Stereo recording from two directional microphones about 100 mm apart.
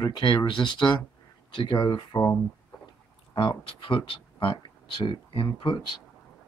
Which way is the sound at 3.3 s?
60° left (ahead or behind).